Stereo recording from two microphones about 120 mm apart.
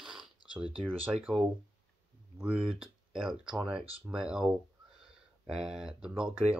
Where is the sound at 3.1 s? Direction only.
5° right (ahead or behind).